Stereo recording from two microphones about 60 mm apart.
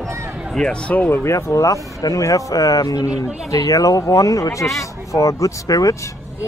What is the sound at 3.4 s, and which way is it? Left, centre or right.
A man's voice, left.